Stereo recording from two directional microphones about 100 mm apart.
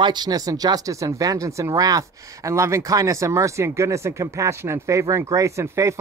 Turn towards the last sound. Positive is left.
turn(degrees=-30)  # may be behind; listen again after turning